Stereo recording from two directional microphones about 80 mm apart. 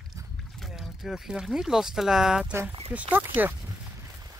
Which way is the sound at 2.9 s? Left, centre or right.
Centre.